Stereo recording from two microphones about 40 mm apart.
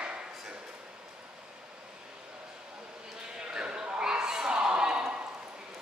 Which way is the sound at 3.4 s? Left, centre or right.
Right.